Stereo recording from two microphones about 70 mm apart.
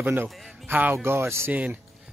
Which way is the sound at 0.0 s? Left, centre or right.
Right.